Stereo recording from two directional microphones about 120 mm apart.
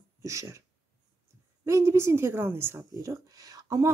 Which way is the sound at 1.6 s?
20° right (ahead or behind).